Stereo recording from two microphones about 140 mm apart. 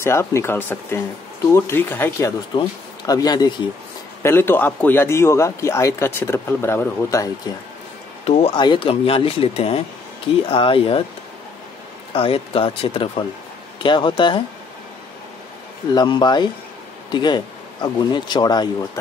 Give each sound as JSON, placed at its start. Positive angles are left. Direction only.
{"t": 0.0, "sound": "speech", "side_deg": 20}
{"t": 3.1, "sound": "speech", "side_deg": 30}
{"t": 4.2, "sound": "speech", "side_deg": 15}
{"t": 8.3, "sound": "speech", "side_deg": 50}
{"t": 8.5, "sound": "speech", "side_deg": 35}
{"t": 12.1, "sound": "speech", "side_deg": 40}
{"t": 15.9, "sound": "speech", "side_deg": 30}